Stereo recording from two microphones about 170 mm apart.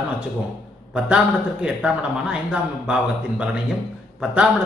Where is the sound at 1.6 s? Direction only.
5° right (ahead or behind).